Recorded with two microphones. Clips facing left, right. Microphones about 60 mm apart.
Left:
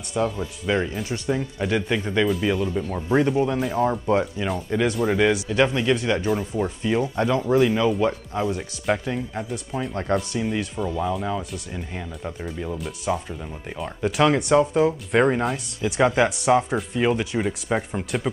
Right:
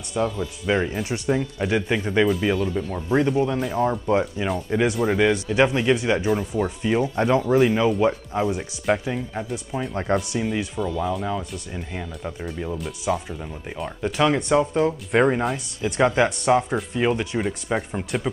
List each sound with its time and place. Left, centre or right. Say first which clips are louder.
0.2 s speech: even; centre
2.5 s speech: even; centre